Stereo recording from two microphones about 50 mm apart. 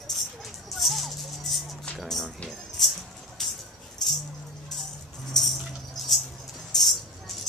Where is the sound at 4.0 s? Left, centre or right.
Centre.